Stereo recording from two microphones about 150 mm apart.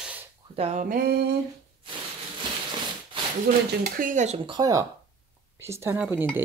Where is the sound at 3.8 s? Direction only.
65° right (ahead or behind).